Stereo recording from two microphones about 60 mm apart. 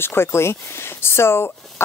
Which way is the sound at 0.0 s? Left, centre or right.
Left.